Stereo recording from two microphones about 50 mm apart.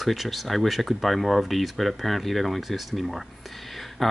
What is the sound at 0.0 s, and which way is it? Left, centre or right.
Speech, centre.